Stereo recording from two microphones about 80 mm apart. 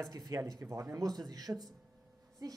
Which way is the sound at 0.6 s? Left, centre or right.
Right.